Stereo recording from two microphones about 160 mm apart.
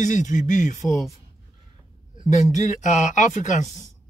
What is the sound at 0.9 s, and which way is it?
Speech, centre (ahead or behind).